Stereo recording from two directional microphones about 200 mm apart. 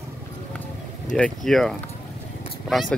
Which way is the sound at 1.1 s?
Centre (ahead or behind).